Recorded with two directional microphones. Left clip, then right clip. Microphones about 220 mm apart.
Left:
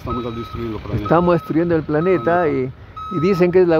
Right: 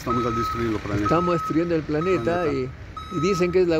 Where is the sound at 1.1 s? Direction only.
30° left (ahead or behind).